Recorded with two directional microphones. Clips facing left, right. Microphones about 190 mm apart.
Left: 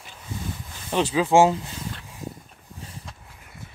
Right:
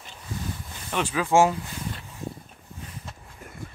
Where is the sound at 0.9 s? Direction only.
25° left (ahead or behind).